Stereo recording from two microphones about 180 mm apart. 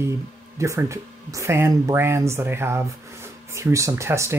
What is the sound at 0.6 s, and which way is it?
Speech, 15° right (ahead or behind).